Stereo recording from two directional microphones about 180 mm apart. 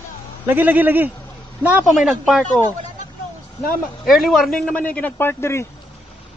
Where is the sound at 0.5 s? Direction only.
10° right (ahead or behind).